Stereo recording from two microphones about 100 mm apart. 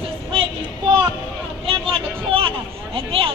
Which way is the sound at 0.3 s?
60° right (ahead or behind).